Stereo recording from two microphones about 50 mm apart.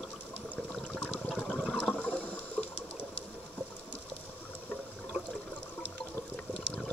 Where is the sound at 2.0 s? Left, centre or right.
Left.